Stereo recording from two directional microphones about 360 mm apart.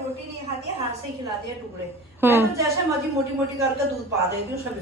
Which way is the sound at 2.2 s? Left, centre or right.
Centre.